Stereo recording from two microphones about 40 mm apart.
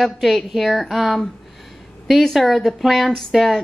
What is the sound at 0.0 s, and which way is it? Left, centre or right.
A woman's voice, centre.